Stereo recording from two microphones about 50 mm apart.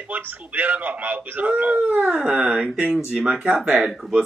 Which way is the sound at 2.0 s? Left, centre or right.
Right.